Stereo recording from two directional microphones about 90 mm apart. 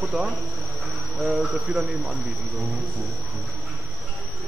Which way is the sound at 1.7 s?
10° right (ahead or behind).